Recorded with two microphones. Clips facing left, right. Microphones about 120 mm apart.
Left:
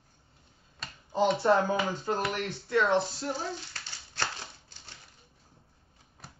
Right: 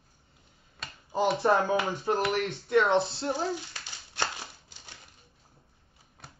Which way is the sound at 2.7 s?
20° right (ahead or behind).